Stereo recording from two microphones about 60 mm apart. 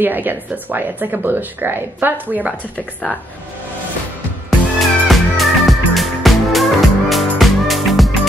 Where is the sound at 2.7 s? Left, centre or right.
Left.